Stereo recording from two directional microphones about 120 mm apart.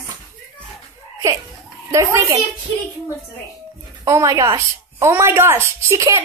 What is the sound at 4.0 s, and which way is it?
A woman's voice, 25° right (ahead or behind).